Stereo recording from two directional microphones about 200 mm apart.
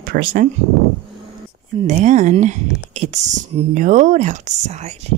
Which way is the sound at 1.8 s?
35° right (ahead or behind).